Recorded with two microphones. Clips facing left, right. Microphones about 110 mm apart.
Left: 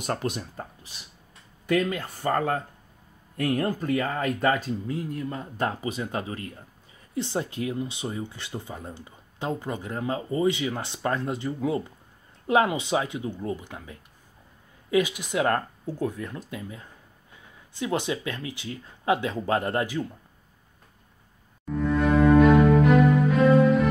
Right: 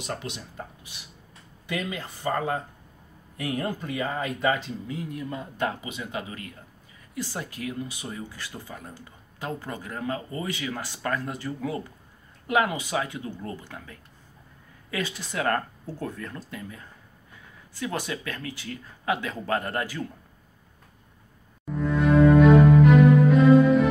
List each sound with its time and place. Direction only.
0.0 s speech: 50° left (ahead or behind)
1.9 s speech: 55° left (ahead or behind)
4.8 s speech: 35° left (ahead or behind)
21.6 s cello: centre (ahead or behind)